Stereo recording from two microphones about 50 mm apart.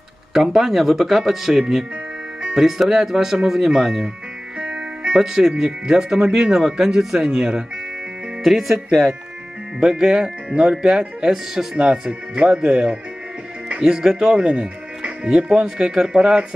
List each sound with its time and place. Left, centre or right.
0.3 s speech: centre
4.6 s music: right
5.1 s speech: centre